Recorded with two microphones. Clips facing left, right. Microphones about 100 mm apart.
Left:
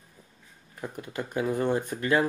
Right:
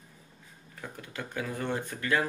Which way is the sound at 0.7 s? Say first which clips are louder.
Left 6 dB; 20° left (ahead or behind).